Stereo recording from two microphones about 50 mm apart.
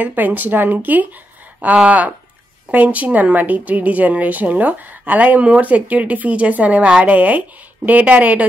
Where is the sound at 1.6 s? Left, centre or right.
Right.